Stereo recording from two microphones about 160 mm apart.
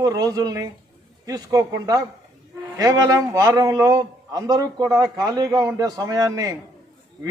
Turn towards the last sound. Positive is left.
turn(degrees=-25)  # may be behind; listen again after turning